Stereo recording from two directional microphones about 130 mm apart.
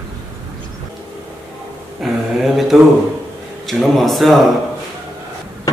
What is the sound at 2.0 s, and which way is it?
Speech, centre (ahead or behind).